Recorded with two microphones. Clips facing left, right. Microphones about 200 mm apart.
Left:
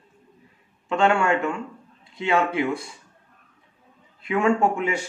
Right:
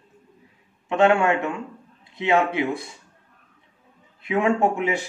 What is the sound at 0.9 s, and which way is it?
Speech, 20° right (ahead or behind).